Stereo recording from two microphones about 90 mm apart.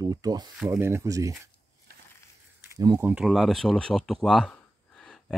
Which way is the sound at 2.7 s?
40° right (ahead or behind).